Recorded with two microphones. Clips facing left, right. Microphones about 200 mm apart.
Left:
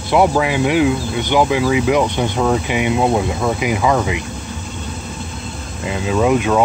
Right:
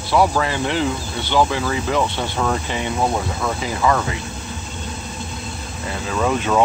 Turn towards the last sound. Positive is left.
turn(degrees=10)  # may be behind; listen again after turning